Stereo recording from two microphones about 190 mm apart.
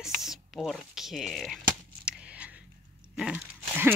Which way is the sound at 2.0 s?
5° right (ahead or behind).